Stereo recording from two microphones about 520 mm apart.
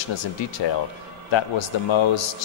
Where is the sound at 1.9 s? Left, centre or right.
Left.